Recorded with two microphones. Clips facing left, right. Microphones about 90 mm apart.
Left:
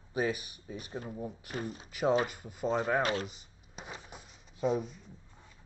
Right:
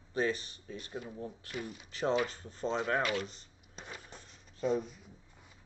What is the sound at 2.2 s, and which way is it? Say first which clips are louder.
Speech: left 2 dB; 15° left (ahead or behind).